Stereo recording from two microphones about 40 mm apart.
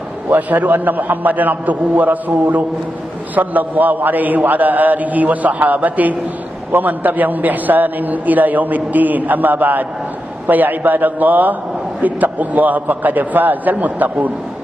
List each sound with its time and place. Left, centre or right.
0.4 s a man's voice: right